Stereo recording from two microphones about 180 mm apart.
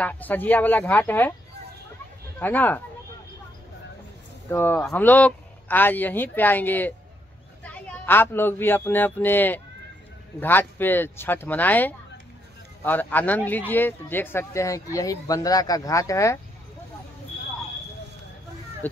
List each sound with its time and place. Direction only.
0.0 s speech: 10° left (ahead or behind)
2.3 s speech: 10° left (ahead or behind)
4.5 s speech: 10° left (ahead or behind)